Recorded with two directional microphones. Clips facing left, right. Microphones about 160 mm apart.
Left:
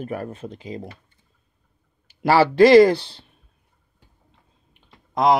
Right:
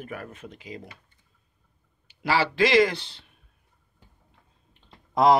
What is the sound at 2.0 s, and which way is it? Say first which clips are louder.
Speech: left 8 dB; 45° left (ahead or behind).